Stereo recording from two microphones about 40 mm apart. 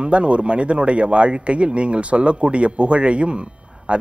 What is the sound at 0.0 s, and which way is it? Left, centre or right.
A man's voice, right.